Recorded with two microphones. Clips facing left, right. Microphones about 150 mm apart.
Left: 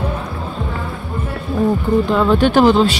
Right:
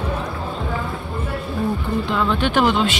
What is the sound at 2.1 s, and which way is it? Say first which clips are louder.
Speech: left 5 dB; 40° left (ahead or behind).